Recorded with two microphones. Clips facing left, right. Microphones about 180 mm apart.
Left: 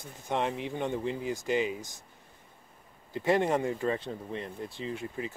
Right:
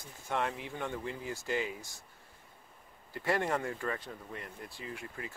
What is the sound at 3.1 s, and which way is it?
Speech, 20° left (ahead or behind).